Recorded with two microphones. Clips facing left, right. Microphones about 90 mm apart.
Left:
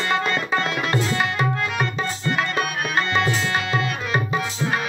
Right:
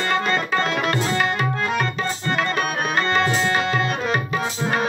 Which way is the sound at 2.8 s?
35° right (ahead or behind).